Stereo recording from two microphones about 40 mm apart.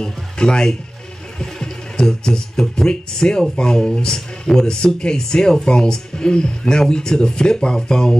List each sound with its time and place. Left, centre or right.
0.0 s speech: centre